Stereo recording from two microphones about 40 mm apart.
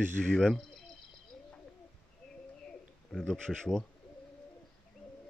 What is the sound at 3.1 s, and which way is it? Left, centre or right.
Speech, centre.